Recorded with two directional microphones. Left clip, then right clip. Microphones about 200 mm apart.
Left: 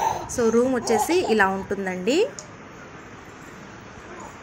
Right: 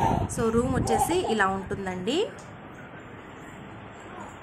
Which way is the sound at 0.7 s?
5° left (ahead or behind).